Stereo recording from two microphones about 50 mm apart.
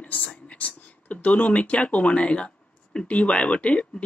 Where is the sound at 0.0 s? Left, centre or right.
Left.